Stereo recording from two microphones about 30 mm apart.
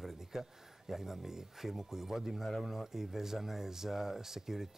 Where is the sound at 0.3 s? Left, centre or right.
Centre.